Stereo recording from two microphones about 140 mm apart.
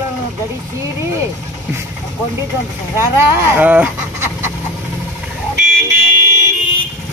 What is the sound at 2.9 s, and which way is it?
Speech, 20° right (ahead or behind).